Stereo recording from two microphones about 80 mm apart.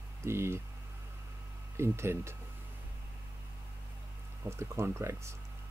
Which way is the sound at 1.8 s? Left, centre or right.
Right.